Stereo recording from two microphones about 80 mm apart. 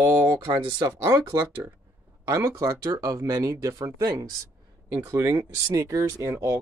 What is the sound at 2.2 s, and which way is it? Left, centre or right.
Speech, right.